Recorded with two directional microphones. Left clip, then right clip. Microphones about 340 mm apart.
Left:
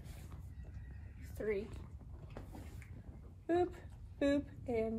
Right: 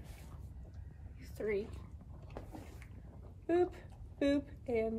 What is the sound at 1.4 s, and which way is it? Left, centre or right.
Speech, centre.